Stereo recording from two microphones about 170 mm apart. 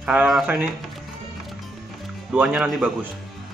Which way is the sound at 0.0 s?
5° right (ahead or behind).